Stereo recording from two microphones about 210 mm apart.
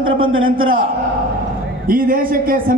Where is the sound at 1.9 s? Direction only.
45° right (ahead or behind).